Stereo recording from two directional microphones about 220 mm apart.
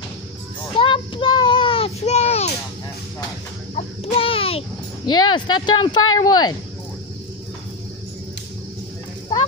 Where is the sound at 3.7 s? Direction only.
25° left (ahead or behind).